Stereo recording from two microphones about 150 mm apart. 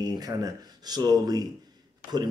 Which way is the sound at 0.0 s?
25° right (ahead or behind).